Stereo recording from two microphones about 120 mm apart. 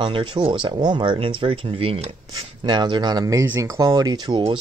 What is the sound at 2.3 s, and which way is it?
Speech, 35° right (ahead or behind).